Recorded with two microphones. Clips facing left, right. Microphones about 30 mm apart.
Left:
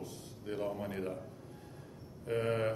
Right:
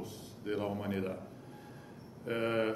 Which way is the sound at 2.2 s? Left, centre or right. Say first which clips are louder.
Right 1 dB; right.